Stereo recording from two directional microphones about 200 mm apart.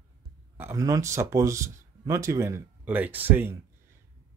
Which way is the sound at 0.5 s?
15° right (ahead or behind).